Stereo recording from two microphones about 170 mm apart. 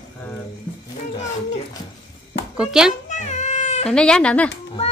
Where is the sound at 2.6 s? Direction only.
5° right (ahead or behind).